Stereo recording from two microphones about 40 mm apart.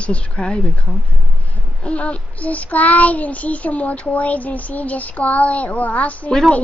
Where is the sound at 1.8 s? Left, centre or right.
Left.